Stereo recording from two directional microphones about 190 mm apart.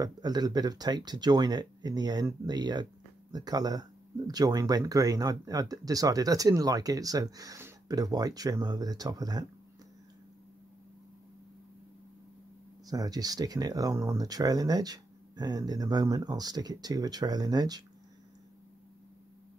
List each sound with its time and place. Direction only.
0.0 s speech: 20° right (ahead or behind)
12.8 s speech: 20° right (ahead or behind)